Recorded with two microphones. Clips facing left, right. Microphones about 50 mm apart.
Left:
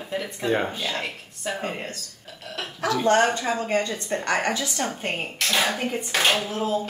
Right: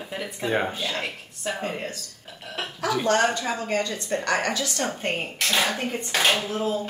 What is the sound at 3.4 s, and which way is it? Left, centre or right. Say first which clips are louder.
Speech: left 2 dB; centre.